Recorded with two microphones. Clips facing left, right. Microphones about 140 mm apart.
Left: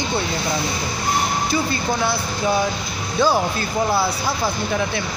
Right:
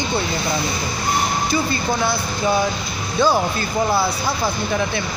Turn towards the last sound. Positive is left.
turn(degrees=5)  # may be behind; listen again after turning